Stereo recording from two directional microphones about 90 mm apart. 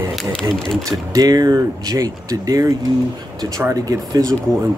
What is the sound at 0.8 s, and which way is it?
Speech, 40° right (ahead or behind).